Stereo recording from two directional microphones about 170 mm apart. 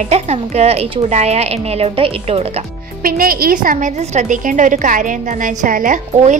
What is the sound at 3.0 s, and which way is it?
A woman's voice, 60° right (ahead or behind).